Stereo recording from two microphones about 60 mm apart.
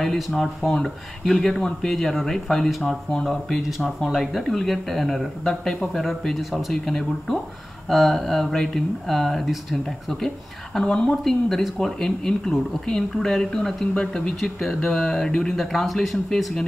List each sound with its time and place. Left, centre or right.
0.0 s speech: centre
13.9 s speech: centre